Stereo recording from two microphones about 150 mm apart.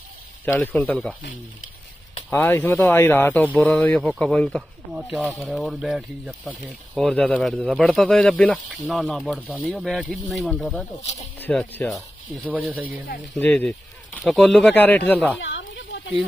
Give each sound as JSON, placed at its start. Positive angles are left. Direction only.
{"t": 0.6, "sound": "speech", "side_deg": 10}
{"t": 2.3, "sound": "speech", "side_deg": 15}
{"t": 11.0, "sound": "speech", "side_deg": 45}
{"t": 11.3, "sound": "speech", "side_deg": 10}
{"t": 12.4, "sound": "speech", "side_deg": -10}
{"t": 13.4, "sound": "speech", "side_deg": 10}